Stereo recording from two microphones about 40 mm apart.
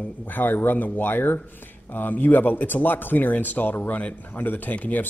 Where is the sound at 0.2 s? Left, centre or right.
Left.